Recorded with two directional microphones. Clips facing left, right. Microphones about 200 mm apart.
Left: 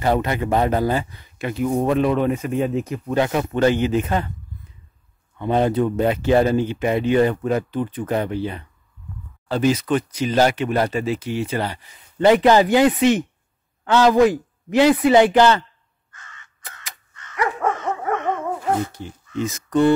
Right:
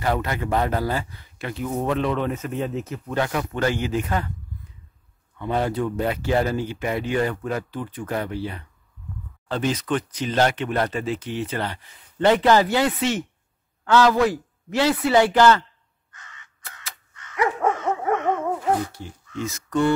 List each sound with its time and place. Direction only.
0.0 s speech: 20° left (ahead or behind)
5.4 s speech: 20° left (ahead or behind)
9.5 s speech: 10° left (ahead or behind)
16.1 s crow: 15° right (ahead or behind)
17.1 s dog: 10° right (ahead or behind)
18.8 s speech: 20° left (ahead or behind)